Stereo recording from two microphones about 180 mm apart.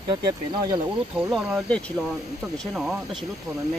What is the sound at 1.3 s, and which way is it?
Speech, 5° left (ahead or behind).